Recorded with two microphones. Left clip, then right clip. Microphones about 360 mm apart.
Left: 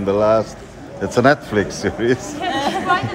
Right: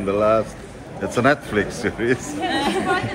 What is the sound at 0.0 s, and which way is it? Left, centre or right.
A man's voice, left.